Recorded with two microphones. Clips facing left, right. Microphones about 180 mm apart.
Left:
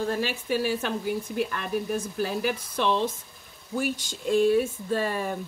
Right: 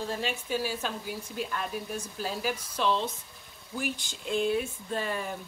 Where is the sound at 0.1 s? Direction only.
65° left (ahead or behind).